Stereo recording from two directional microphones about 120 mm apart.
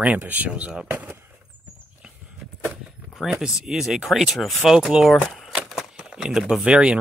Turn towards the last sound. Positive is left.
turn(degrees=-5)  # may be behind; listen again after turning